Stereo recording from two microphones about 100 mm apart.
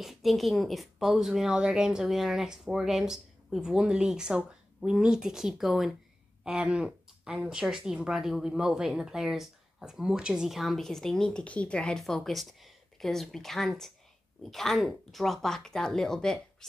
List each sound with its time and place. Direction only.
0.0 s speech: centre (ahead or behind)